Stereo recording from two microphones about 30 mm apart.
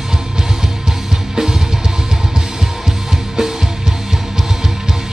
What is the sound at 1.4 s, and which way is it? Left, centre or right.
Music, centre.